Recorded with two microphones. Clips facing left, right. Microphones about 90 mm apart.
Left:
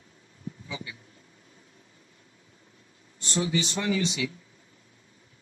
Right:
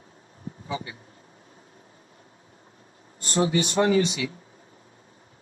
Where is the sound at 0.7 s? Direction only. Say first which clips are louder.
Right 8 dB; 45° right (ahead or behind).